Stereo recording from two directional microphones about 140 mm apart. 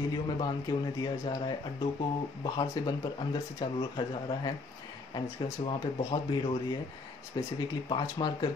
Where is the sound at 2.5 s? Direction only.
35° left (ahead or behind).